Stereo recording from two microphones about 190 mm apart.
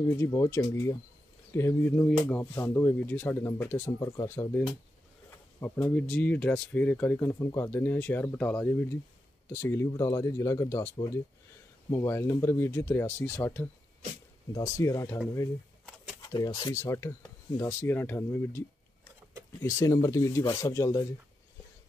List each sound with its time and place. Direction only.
0.2 s speech: 15° left (ahead or behind)
16.3 s speech: 20° left (ahead or behind)
19.6 s speech: 15° left (ahead or behind)